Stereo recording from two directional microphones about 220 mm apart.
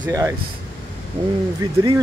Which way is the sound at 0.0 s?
15° right (ahead or behind).